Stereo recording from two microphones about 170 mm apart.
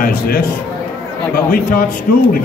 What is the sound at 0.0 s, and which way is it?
Speech, 60° left (ahead or behind).